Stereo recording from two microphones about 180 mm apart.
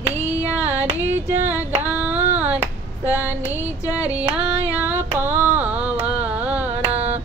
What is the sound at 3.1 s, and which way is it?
Music, 10° right (ahead or behind).